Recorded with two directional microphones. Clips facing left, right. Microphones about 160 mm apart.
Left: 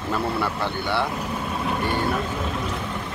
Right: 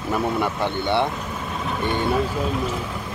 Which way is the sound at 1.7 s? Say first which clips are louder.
Right 2 dB; 5° left (ahead or behind).